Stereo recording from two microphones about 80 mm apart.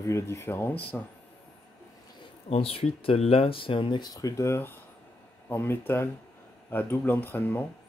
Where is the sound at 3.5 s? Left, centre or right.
Left.